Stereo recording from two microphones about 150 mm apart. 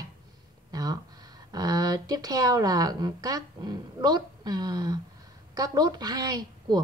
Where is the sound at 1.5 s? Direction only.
25° right (ahead or behind).